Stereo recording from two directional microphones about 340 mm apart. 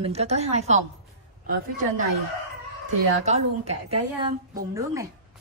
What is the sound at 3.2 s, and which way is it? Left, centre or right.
A woman's voice, centre.